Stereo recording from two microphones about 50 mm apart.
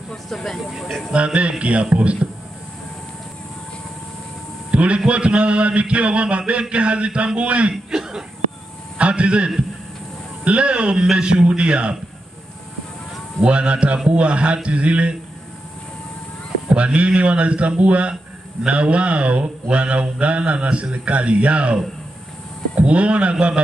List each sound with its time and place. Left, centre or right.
0.1 s speech: centre
1.1 s mantra: right
4.6 s mantra: right
7.7 s throat clearing: centre
8.9 s mantra: right
13.4 s mantra: right
16.6 s mantra: right
22.8 s mantra: right